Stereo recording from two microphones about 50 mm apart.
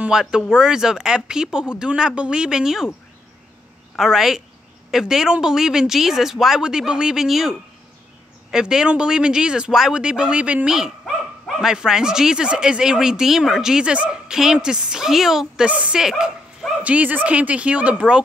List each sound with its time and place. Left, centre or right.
0.1 s speech: centre
4.0 s speech: centre
7.2 s speech: centre; by 10.7 s right
10.7 s dog: centre
11.7 s speech: centre
15.6 s a woman's voice: right
15.9 s speech: centre
16.8 s a woman's voice: right